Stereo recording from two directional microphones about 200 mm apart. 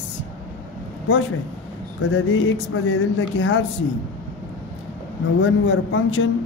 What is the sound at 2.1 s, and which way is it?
Speech, 70° left (ahead or behind).